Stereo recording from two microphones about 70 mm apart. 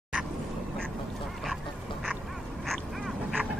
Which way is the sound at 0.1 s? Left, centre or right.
Centre.